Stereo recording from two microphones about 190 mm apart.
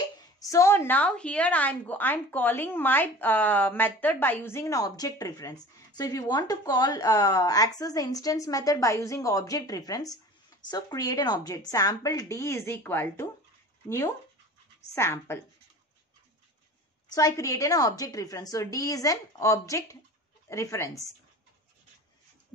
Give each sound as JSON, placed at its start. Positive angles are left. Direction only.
{"t": 0.4, "sound": "a woman's voice", "side_deg": 15}
{"t": 17.1, "sound": "a woman's voice", "side_deg": 20}